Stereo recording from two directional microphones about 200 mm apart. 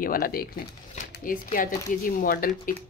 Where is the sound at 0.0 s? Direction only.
45° left (ahead or behind).